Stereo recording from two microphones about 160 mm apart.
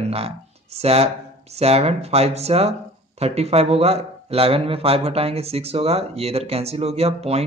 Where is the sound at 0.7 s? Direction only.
40° right (ahead or behind).